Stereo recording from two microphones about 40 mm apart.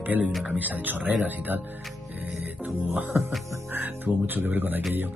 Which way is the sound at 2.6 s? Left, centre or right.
Right.